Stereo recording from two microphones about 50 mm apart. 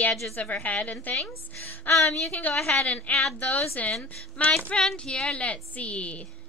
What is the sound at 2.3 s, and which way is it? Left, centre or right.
Speech, left.